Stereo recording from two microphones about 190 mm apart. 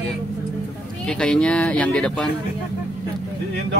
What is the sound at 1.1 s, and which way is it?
Speech, 5° left (ahead or behind).